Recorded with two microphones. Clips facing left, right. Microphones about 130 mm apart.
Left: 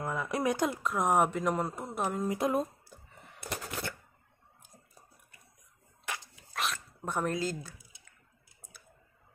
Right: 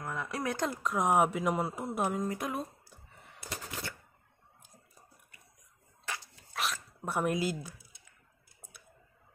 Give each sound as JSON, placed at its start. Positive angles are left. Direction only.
{"t": 0.1, "sound": "a sound", "side_deg": 15}
{"t": 0.7, "sound": "a woman's voice", "side_deg": 0}
{"t": 2.2, "sound": "speech", "side_deg": 25}
{"t": 3.4, "sound": "typewriter", "side_deg": 60}
{"t": 6.0, "sound": "a sound", "side_deg": 15}
{"t": 6.5, "sound": "dog", "side_deg": 0}